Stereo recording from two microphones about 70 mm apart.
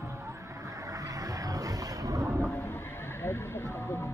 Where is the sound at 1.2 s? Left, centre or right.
Right.